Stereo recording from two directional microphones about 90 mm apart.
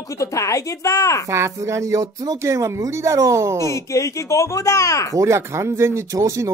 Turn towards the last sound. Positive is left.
turn(degrees=-35)  # may be behind; listen again after turning